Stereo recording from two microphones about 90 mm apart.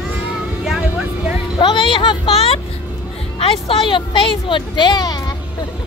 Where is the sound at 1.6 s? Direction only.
65° left (ahead or behind); by 2.5 s 85° left.